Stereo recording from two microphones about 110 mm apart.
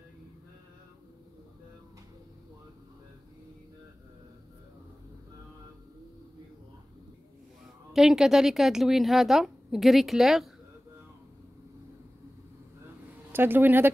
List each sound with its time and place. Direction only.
7.9 s a woman's voice: 5° right (ahead or behind)
13.3 s speech: 20° right (ahead or behind)